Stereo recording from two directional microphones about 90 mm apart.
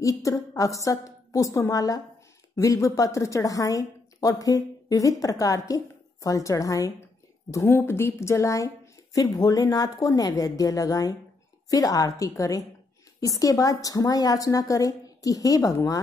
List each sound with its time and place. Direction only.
0.0 s a woman's voice: 40° left (ahead or behind)